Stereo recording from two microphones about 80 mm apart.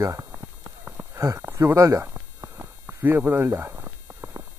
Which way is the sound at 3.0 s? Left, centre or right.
Right.